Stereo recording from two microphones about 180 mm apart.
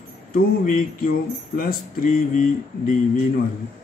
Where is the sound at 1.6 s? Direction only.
55° left (ahead or behind).